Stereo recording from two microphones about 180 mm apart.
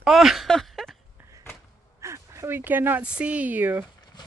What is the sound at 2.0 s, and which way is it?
Speech, 15° right (ahead or behind).